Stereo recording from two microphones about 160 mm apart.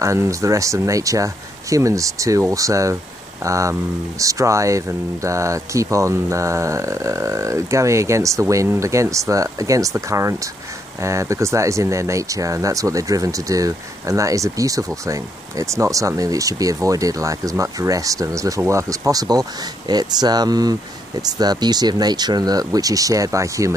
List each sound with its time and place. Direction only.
0.0 s speech: 20° right (ahead or behind)